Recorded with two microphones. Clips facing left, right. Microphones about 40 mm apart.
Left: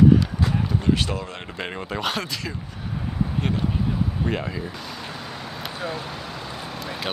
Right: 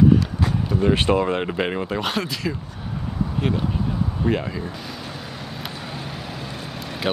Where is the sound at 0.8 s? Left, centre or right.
Right.